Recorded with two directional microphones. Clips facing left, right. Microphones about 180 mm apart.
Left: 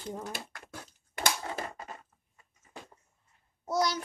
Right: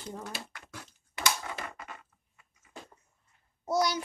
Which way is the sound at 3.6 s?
10° right (ahead or behind).